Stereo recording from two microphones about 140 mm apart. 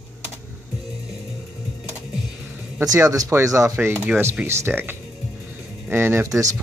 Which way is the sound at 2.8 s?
20° right (ahead or behind).